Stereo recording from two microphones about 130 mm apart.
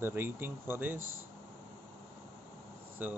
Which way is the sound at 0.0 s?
15° right (ahead or behind).